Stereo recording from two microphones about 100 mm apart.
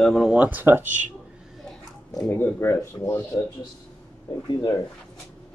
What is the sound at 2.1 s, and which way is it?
Speech, 25° left (ahead or behind).